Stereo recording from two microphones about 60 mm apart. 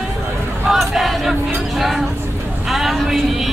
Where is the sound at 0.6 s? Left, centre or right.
Centre.